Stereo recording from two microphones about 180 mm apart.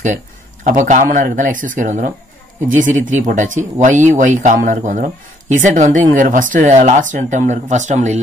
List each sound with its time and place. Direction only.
0.7 s speech: 45° right (ahead or behind)